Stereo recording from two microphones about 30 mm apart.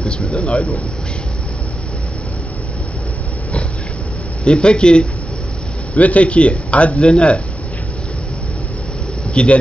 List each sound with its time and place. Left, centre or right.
0.3 s speech: left
4.5 s a man's voice: left
5.9 s speech: left
9.3 s a man's voice: left